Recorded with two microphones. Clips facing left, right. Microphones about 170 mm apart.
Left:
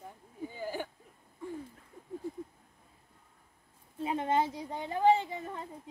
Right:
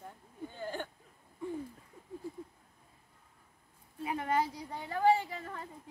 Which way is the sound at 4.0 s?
25° left (ahead or behind).